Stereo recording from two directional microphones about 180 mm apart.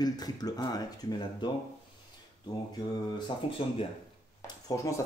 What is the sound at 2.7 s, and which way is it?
Speech, 25° left (ahead or behind).